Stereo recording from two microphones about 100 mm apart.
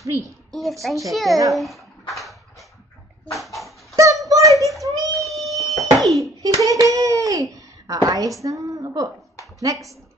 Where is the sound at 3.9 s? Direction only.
35° right (ahead or behind).